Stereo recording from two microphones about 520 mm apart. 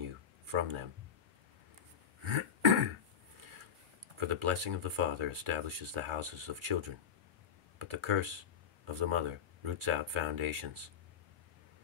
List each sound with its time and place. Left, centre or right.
0.5 s speech: right
2.2 s throat clearing: right
4.2 s speech: right